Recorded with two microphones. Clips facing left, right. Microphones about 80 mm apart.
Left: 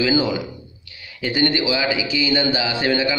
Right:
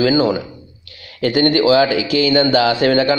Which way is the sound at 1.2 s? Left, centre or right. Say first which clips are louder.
Right 6 dB; right.